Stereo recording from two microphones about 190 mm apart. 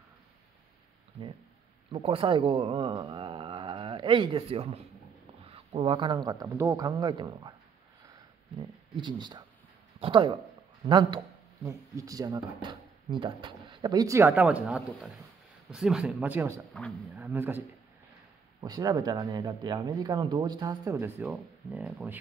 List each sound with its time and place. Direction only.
1.9 s speech: 30° right (ahead or behind)
8.1 s a sound: 25° right (ahead or behind)
9.9 s speech: 25° right (ahead or behind)
21.3 s speech: 5° right (ahead or behind)